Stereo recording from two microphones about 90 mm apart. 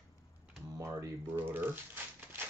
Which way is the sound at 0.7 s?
35° right (ahead or behind).